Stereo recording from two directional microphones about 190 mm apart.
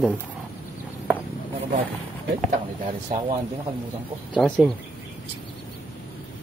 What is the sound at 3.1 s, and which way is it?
Speech, 40° right (ahead or behind).